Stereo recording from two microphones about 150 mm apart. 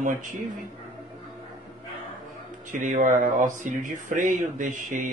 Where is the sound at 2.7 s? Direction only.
60° right (ahead or behind).